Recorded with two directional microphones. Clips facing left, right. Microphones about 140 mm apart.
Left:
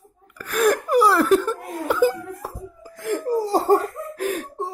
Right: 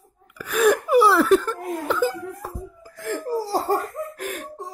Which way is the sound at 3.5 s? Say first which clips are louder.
Left 7 dB; 20° left (ahead or behind).